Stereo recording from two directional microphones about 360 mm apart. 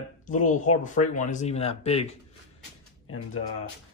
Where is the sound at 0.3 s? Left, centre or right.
Left.